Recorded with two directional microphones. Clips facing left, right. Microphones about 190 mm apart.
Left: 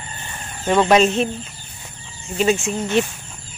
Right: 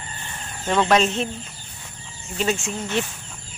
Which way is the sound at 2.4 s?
15° left (ahead or behind).